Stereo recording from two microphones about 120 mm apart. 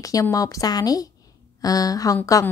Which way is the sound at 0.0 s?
30° left (ahead or behind).